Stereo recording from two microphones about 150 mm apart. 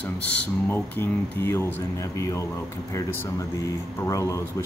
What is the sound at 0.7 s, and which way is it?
Speech, 15° left (ahead or behind).